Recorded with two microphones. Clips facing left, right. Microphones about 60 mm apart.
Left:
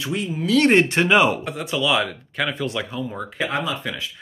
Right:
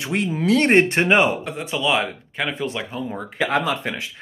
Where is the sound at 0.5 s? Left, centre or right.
Right.